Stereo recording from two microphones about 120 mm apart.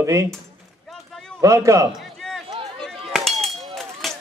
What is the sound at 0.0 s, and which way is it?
Speech, 25° right (ahead or behind).